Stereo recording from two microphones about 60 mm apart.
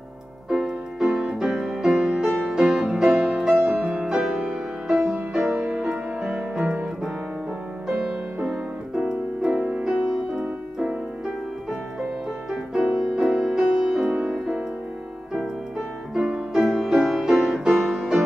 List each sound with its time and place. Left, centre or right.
0.5 s music: centre
7.9 s music: centre
10.1 s piano: centre
12.8 s music: centre
16.2 s music: centre
16.5 s music: centre